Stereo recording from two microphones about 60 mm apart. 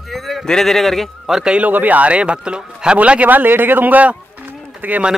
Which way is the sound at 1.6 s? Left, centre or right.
Right.